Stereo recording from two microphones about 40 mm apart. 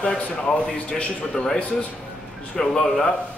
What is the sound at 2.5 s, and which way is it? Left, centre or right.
Speech, left.